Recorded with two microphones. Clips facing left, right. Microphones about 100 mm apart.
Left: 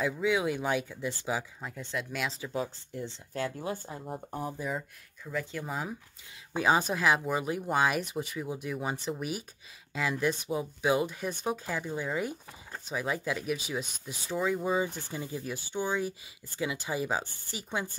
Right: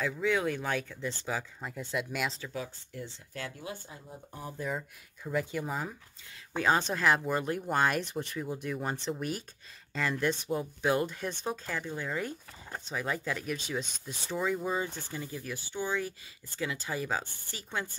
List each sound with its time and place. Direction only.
0.0 s speech: 10° left (ahead or behind)
1.6 s speech: centre (ahead or behind)
2.5 s speech: 25° left (ahead or behind); by 4.5 s 50° left (ahead or behind)
4.6 s speech: centre (ahead or behind)
5.2 s speech: 10° right (ahead or behind)
14.9 s speech: 15° left (ahead or behind)